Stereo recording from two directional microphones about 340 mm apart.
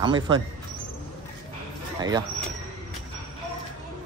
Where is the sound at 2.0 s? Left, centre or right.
Centre.